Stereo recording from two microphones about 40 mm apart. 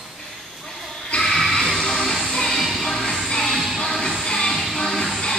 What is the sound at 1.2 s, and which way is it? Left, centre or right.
Music, centre.